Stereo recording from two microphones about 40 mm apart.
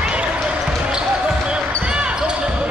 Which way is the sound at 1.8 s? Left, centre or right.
Right.